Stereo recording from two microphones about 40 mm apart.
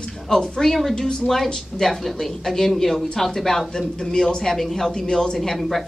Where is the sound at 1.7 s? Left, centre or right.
Centre.